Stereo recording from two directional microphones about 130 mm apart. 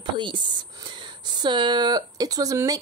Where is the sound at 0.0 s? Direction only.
35° right (ahead or behind).